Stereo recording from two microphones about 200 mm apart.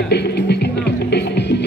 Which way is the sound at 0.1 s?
55° left (ahead or behind).